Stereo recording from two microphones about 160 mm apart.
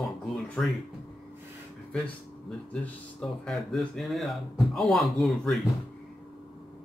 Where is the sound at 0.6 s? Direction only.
5° left (ahead or behind).